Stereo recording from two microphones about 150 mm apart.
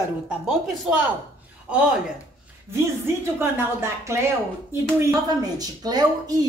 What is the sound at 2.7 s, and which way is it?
A woman's voice, 15° right (ahead or behind).